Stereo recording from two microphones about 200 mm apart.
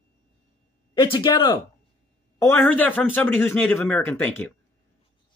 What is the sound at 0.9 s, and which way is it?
Speech, 25° left (ahead or behind).